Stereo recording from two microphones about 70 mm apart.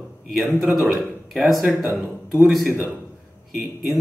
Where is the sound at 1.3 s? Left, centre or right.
Centre.